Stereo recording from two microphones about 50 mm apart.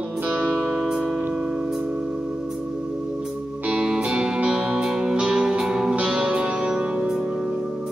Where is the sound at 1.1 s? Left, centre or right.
Right.